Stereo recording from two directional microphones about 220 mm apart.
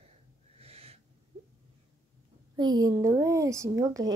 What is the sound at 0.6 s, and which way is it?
Owl, 25° right (ahead or behind).